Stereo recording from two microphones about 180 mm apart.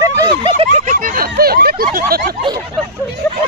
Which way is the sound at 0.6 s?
45° right (ahead or behind).